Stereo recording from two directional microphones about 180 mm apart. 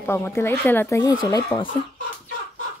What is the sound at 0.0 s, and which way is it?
Speech, 10° left (ahead or behind).